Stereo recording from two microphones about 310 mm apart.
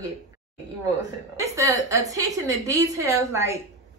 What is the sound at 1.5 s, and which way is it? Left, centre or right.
A woman's voice, centre.